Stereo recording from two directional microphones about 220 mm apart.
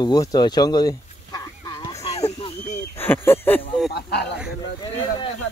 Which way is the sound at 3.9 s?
50° left (ahead or behind).